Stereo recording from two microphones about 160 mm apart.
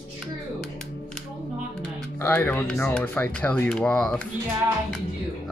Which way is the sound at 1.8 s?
15° left (ahead or behind).